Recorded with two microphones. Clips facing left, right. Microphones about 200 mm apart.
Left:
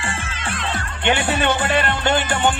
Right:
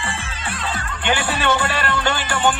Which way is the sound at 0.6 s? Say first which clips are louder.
Left 2 dB; 25° left (ahead or behind).